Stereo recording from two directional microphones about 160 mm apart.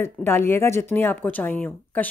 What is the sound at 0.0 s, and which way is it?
Speech, 15° left (ahead or behind).